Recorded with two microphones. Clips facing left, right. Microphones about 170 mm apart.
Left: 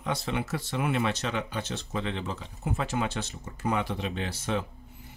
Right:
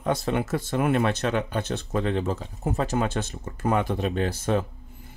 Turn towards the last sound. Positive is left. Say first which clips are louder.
# right 6 dB
turn(degrees=-45)  # may be behind; listen again after turning